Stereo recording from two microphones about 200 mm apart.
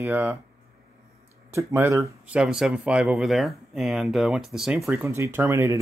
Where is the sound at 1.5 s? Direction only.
10° right (ahead or behind).